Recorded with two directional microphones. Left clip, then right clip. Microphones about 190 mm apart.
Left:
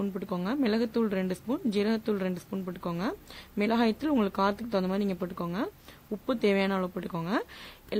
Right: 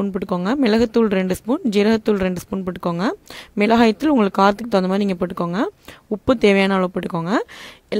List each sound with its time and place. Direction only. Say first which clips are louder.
0.0 s speech: right 11 dB; 40° right (ahead or behind)